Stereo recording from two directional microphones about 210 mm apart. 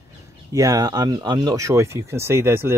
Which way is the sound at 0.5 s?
15° right (ahead or behind).